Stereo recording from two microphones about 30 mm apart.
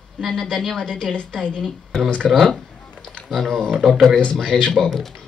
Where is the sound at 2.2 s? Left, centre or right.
Centre.